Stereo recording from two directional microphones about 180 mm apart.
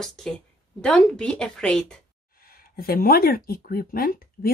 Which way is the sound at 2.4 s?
55° left (ahead or behind).